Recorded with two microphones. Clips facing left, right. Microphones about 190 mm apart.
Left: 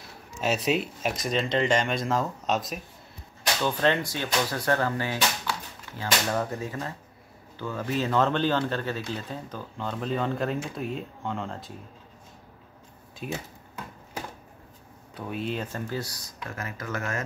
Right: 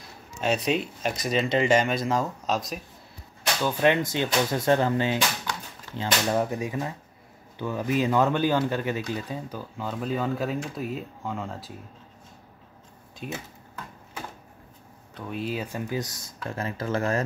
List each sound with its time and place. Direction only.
0.4 s speech: 5° left (ahead or behind)
3.6 s speech: 10° right (ahead or behind)
13.2 s speech: centre (ahead or behind)
15.1 s speech: centre (ahead or behind); by 17.2 s 30° right (ahead or behind)